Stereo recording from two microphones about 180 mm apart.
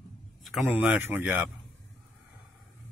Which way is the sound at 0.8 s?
10° right (ahead or behind).